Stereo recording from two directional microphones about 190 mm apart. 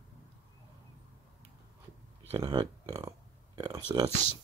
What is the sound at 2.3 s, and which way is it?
Speech, 25° right (ahead or behind).